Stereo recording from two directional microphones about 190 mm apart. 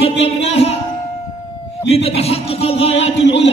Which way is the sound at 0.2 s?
30° left (ahead or behind).